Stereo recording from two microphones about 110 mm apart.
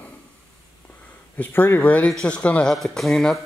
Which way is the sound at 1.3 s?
20° left (ahead or behind).